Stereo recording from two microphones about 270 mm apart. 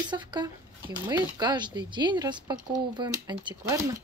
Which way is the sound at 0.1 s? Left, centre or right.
Centre.